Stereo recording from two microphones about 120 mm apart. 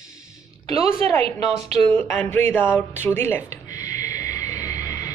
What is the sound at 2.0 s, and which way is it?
Speech, 15° left (ahead or behind).